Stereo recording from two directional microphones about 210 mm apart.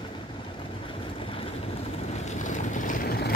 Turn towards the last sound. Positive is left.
turn(degrees=45)  # may be behind; listen again after turning